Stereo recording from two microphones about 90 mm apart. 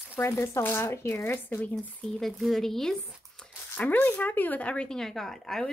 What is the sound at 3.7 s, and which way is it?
A woman's voice, 20° left (ahead or behind).